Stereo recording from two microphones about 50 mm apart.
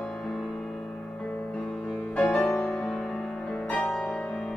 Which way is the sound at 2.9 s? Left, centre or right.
Centre.